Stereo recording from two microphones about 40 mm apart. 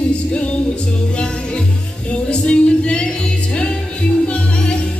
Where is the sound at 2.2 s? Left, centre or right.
Left.